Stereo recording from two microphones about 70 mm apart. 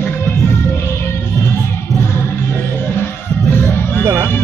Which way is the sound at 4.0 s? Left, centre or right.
Right.